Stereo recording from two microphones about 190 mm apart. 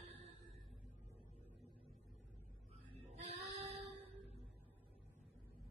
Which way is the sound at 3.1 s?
30° right (ahead or behind).